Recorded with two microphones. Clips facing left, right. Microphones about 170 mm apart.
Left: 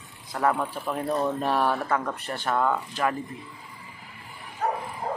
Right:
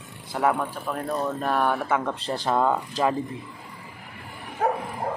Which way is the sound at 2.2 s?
35° right (ahead or behind).